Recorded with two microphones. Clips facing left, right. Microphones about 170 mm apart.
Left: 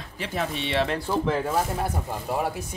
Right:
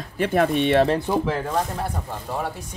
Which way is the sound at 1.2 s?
Centre (ahead or behind).